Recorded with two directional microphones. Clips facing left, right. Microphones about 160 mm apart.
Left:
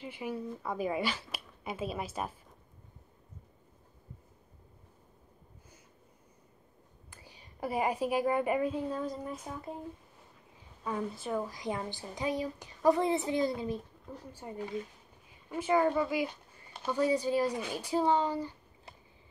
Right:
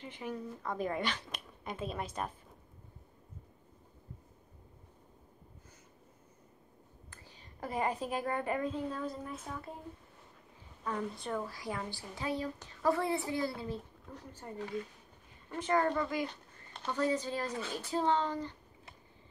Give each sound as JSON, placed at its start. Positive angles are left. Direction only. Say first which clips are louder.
{"t": 0.0, "sound": "a woman's voice", "louder": "left 3 dB", "side_deg": 10}
{"t": 7.1, "sound": "a woman's voice", "louder": "left 2 dB", "side_deg": 10}
{"t": 10.8, "sound": "a woman's voice", "louder": "left 2 dB", "side_deg": 10}
{"t": 15.5, "sound": "a woman's voice", "louder": "left 3 dB", "side_deg": 10}